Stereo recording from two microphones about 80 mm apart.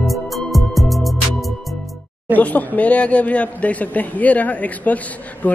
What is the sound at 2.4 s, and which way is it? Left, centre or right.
A man's voice, left.